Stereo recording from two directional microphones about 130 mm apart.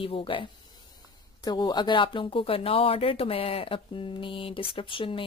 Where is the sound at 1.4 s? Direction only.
35° left (ahead or behind).